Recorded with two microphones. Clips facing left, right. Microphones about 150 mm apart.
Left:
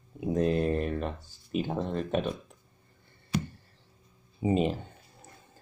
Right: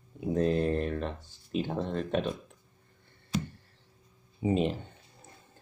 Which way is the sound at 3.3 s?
65° left (ahead or behind).